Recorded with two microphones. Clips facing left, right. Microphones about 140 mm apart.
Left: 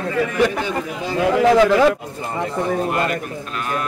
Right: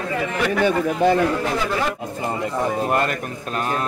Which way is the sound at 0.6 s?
55° right (ahead or behind).